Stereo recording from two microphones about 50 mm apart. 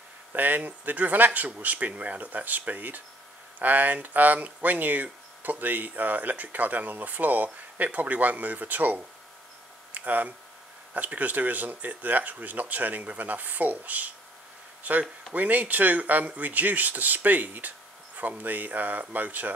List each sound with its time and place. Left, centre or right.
0.3 s speech: right